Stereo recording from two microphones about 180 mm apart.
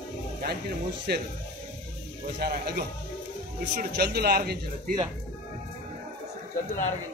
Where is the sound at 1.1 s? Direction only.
65° right (ahead or behind).